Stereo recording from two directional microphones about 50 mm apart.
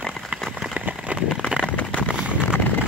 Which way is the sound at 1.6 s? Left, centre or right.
Left.